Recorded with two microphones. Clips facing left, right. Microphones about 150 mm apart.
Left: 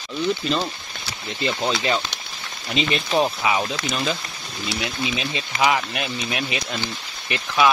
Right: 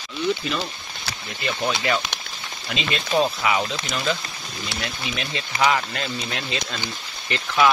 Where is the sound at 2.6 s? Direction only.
20° left (ahead or behind).